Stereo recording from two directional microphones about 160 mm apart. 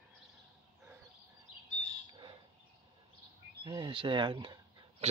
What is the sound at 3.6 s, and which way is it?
Speech, 25° right (ahead or behind).